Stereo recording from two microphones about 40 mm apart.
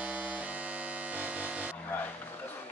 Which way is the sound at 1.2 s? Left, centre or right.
Right.